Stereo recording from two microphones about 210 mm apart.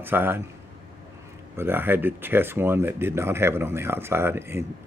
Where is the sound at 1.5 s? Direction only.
10° right (ahead or behind).